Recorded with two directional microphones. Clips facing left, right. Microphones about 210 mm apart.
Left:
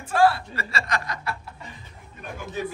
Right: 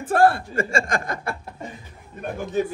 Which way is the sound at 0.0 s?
55° right (ahead or behind).